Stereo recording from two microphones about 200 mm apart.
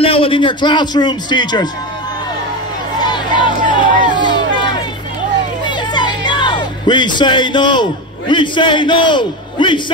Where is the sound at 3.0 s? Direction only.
20° left (ahead or behind).